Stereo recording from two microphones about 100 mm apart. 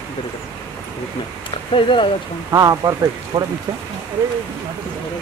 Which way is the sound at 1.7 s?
55° left (ahead or behind).